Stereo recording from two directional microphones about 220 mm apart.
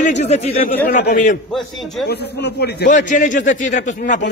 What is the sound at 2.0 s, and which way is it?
A man's voice, 45° left (ahead or behind).